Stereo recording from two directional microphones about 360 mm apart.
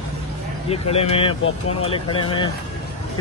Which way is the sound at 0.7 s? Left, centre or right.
Centre.